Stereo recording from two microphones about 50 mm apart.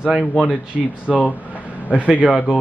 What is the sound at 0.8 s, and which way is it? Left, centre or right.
Speech, centre.